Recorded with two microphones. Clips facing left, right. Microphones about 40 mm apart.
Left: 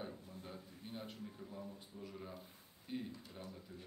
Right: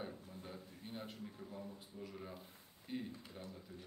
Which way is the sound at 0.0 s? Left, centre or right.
Centre.